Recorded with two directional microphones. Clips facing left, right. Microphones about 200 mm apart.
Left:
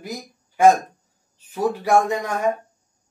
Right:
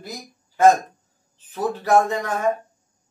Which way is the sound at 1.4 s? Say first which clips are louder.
Left 1 dB; 10° left (ahead or behind).